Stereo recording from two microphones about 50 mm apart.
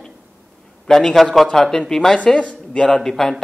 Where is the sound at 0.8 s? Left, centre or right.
Centre.